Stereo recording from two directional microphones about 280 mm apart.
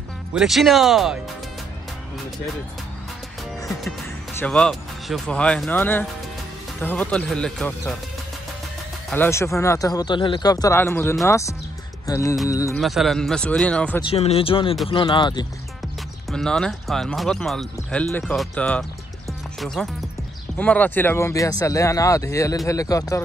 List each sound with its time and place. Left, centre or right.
0.3 s speech: centre
3.6 s speech: centre
9.1 s speech: centre
12.7 s speech: centre
14.0 s speech: left
16.3 s speech: centre